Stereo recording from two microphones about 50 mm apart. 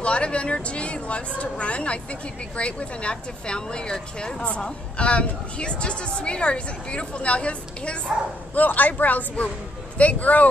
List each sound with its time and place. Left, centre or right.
0.0 s speech: left
8.5 s speech: left